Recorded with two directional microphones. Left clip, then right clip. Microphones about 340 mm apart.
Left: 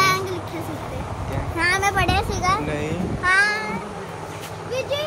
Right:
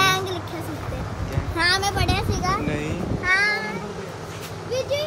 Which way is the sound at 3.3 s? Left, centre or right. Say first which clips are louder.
Left 2 dB; left.